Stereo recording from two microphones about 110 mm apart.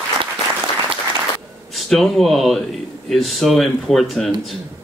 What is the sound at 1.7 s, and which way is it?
Speech, centre (ahead or behind).